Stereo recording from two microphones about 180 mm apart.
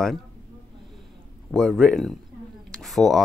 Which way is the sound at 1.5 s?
5° left (ahead or behind).